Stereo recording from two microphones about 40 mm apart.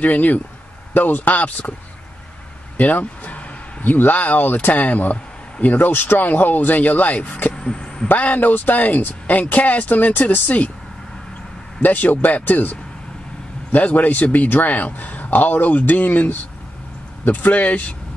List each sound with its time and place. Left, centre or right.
0.0 s a man's voice: left
2.8 s a sound: left
3.8 s a man's voice: left
5.9 s a man's voice: left
7.5 s vehicle: left
8.1 s a man's voice: left
11.8 s a man's voice: left
13.7 s a man's voice: left